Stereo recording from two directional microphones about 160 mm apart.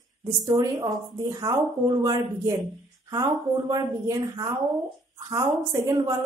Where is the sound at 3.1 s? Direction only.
25° right (ahead or behind).